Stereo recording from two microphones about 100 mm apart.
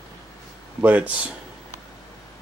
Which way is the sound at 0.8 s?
15° right (ahead or behind).